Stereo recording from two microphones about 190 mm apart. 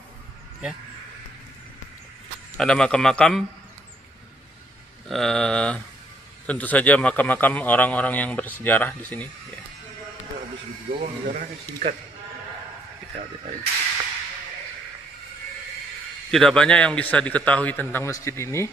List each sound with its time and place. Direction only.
2.5 s a man's voice: 5° left (ahead or behind)
5.0 s a man's voice: centre (ahead or behind)
10.9 s speech: 45° right (ahead or behind)
16.3 s a man's voice: 5° left (ahead or behind)